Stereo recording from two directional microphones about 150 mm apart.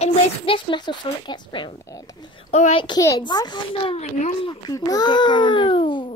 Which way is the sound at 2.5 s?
50° left (ahead or behind).